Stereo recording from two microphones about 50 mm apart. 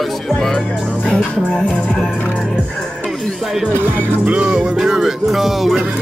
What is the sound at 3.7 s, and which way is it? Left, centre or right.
Speech, right.